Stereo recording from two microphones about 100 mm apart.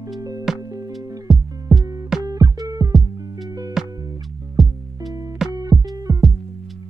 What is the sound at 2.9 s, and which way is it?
Music, centre (ahead or behind).